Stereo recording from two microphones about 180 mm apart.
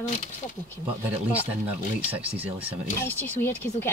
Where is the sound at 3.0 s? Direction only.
10° left (ahead or behind).